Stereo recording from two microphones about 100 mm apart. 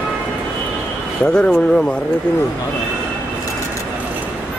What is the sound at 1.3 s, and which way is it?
Speech, 10° left (ahead or behind).